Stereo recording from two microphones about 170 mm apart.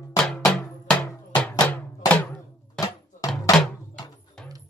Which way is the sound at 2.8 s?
5° left (ahead or behind).